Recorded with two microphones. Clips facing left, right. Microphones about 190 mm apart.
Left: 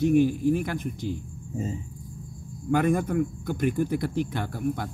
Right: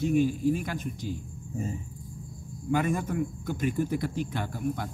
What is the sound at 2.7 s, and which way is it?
A man's voice, 50° left (ahead or behind).